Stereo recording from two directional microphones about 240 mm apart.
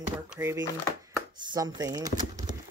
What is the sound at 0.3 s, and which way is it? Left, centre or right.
Speech, centre.